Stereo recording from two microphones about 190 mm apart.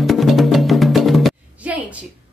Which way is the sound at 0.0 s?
Centre (ahead or behind).